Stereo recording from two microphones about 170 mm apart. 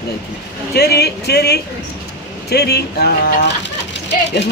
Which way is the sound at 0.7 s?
70° left (ahead or behind).